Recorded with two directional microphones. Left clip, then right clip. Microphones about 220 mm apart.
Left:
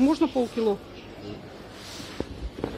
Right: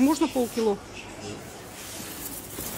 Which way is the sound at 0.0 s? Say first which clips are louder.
Even; 10° right (ahead or behind).